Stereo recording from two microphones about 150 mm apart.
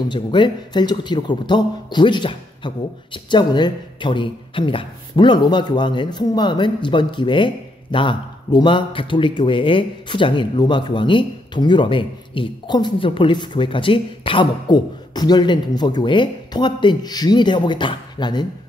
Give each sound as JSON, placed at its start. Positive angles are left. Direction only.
{"t": 0.1, "sound": "speech", "side_deg": 30}